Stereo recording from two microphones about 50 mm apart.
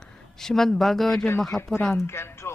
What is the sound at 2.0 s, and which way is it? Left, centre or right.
Speech, left.